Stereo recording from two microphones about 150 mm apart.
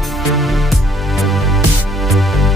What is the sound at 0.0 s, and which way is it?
Music, centre (ahead or behind).